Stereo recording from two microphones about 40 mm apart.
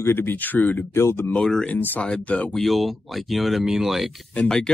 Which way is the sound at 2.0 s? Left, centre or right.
Left.